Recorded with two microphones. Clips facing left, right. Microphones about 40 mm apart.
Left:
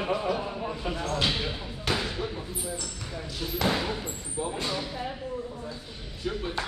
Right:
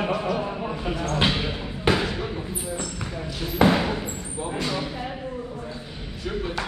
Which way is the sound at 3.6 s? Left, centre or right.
Right.